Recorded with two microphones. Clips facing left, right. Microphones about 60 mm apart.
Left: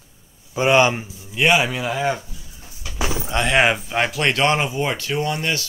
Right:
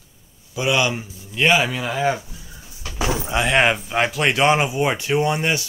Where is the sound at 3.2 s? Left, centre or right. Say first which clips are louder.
Left 1 dB; centre.